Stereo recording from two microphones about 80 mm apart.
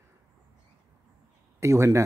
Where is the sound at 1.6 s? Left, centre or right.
Right.